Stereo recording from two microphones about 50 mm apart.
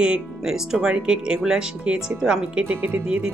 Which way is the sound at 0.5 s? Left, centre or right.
Centre.